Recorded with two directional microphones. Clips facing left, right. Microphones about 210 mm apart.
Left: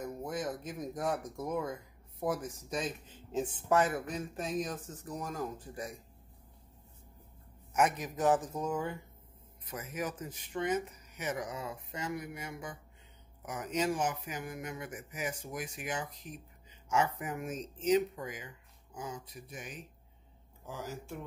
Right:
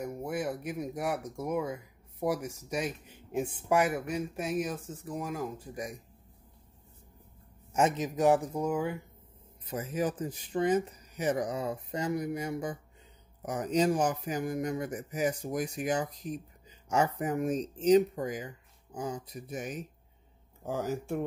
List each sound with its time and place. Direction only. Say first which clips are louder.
0.0 s speech: right 3 dB; 10° right (ahead or behind)
7.7 s a man's voice: right 3 dB; 25° right (ahead or behind); by 9.0 s 10° right (ahead or behind)
9.7 s speech: right 7 dB; 30° right (ahead or behind); by 21.2 s 50° right (ahead or behind)